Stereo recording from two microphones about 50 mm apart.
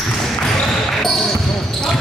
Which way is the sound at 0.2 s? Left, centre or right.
Centre.